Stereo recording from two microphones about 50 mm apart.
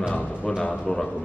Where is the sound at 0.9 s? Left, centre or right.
Left.